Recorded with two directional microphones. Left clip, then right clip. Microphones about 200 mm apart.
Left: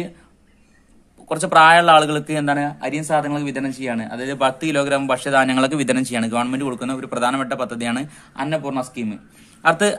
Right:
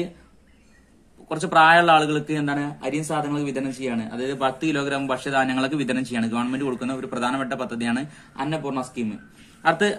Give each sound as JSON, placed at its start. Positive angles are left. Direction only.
{"t": 1.3, "sound": "speech", "side_deg": 45}